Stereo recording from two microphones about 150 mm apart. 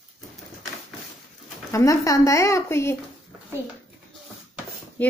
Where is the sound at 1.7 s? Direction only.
20° left (ahead or behind).